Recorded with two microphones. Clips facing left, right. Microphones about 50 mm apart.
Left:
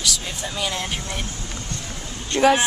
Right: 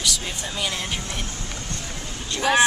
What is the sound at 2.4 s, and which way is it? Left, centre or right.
Speech, left.